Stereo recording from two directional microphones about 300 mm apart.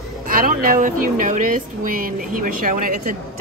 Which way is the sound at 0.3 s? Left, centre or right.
Right.